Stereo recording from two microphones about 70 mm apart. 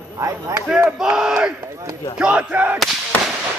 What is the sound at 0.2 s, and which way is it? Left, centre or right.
Speech, right.